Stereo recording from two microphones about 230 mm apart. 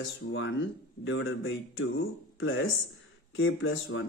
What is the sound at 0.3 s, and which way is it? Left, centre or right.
Speech, left.